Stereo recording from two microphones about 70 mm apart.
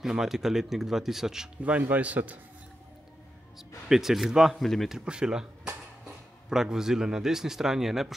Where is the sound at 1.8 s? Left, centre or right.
Right.